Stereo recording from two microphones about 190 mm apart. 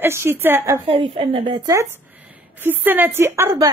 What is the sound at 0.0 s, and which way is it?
Speech, 10° right (ahead or behind).